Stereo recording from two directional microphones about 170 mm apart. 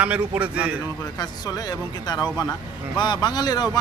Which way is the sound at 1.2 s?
20° left (ahead or behind).